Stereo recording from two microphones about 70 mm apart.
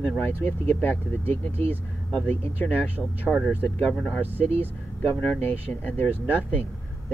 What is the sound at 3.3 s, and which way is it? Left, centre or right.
Speech, centre.